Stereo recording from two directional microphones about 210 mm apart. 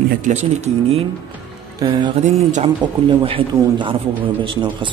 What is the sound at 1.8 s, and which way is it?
Speech, 20° right (ahead or behind).